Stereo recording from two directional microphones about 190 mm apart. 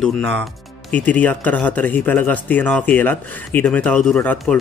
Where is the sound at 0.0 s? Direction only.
5° left (ahead or behind).